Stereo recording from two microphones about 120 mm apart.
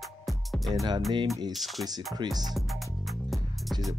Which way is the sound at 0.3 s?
Centre (ahead or behind).